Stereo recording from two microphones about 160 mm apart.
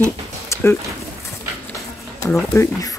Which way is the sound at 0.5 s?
15° left (ahead or behind).